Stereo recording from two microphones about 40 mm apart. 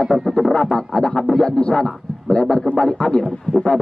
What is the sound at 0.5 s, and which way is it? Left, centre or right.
A man's voice, centre.